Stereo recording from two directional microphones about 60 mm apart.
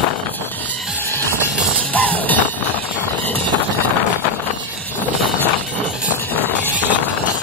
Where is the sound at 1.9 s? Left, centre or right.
Left.